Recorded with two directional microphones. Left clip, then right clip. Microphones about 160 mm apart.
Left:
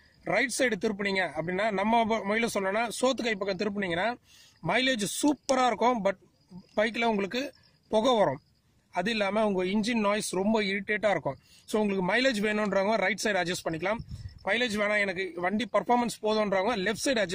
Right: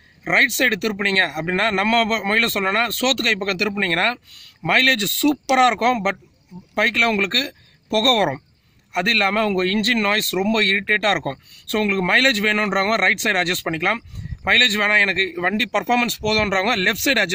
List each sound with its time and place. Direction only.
0.2 s speech: 40° left (ahead or behind)